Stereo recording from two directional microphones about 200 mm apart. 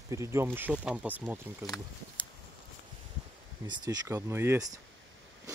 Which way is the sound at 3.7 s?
15° right (ahead or behind).